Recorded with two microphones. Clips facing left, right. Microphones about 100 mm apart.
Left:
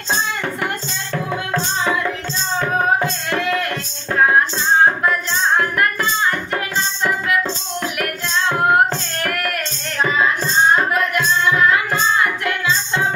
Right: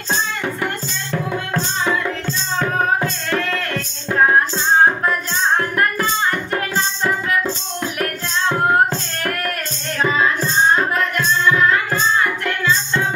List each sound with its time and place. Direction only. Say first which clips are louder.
2.7 s music: left 2 dB; 10° left (ahead or behind)
8.7 s singing: left 1 dB; 30° right (ahead or behind)
10.9 s music: left 1 dB; 10° left (ahead or behind)